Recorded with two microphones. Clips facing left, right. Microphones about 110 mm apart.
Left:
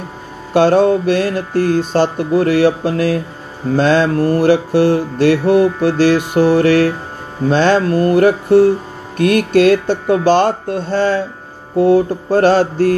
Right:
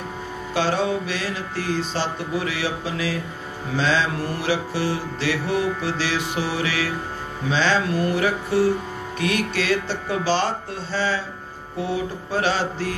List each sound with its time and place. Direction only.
0.5 s mantra: 55° left (ahead or behind)